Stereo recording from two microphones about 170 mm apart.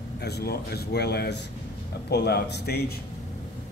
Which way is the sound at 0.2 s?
70° left (ahead or behind).